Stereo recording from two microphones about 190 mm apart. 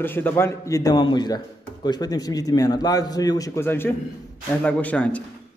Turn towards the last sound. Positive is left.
turn(degrees=10)  # may be behind; listen again after turning